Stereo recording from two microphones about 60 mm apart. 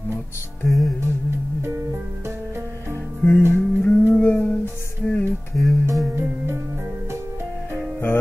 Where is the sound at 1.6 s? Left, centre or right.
Right.